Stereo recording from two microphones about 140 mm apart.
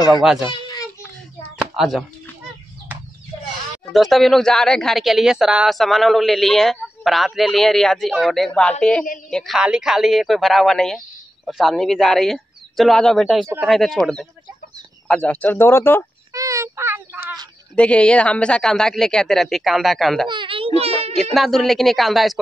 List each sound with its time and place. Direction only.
0.1 s speech: centre (ahead or behind)
0.5 s a sound: 30° left (ahead or behind)
1.7 s speech: centre (ahead or behind)
3.9 s speech: centre (ahead or behind); by 16.1 s 15° left (ahead or behind)
16.3 s a sound: 20° right (ahead or behind)
17.7 s speech: 10° left (ahead or behind)
20.2 s a child's voice: 35° right (ahead or behind)
21.2 s speech: centre (ahead or behind)